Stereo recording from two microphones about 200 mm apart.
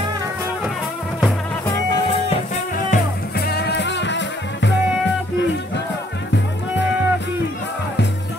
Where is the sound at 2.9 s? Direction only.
50° left (ahead or behind).